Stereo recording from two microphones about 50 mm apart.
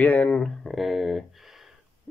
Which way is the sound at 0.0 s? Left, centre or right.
Left.